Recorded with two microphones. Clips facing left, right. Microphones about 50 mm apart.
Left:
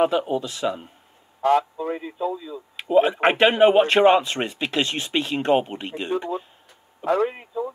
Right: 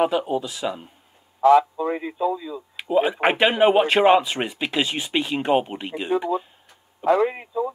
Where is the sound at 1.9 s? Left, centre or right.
Right.